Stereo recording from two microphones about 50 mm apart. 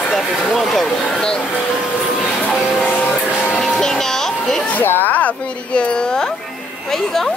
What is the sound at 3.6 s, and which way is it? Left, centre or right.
Music, centre.